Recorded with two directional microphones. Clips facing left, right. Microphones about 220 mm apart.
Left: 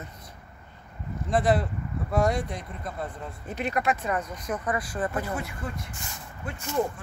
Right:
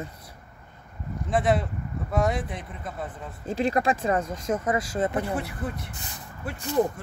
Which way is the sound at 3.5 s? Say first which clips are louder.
Right 4 dB; 30° right (ahead or behind).